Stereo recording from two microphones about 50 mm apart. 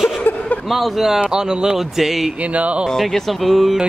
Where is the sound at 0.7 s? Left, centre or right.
Centre.